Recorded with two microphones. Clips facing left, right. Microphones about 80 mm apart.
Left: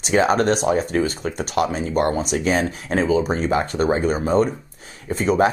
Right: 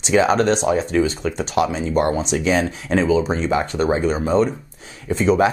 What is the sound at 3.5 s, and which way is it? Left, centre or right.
Speech, centre.